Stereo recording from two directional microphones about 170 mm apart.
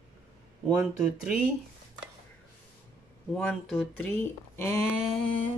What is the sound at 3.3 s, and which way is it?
Speech, centre (ahead or behind).